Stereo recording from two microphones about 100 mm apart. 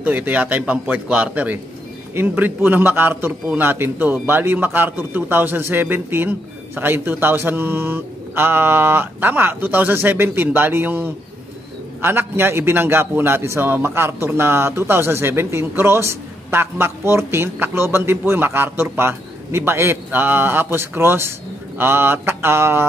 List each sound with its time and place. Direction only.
0.0 s a man's voice: 15° right (ahead or behind)